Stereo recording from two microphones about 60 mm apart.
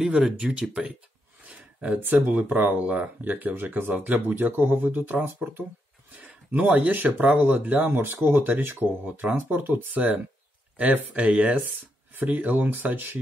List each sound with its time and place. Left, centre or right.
0.0 s speech: centre
1.4 s a sound: right
2.2 s speech: right